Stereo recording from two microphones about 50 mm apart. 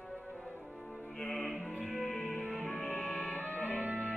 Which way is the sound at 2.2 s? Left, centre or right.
Left.